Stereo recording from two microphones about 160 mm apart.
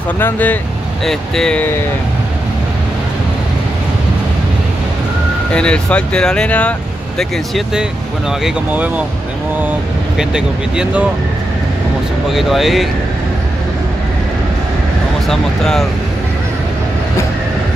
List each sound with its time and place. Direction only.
0.2 s speech: 10° left (ahead or behind)
5.5 s speech: 5° left (ahead or behind)
12.3 s speech: centre (ahead or behind)
15.2 s speech: centre (ahead or behind)